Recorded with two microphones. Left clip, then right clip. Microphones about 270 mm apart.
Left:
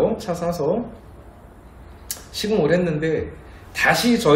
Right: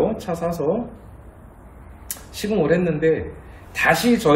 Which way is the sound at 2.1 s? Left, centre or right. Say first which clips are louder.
Left 2 dB; centre.